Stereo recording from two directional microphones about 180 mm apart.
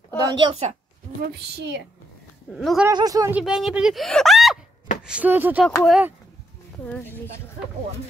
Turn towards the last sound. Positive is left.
turn(degrees=10)  # may be behind; listen again after turning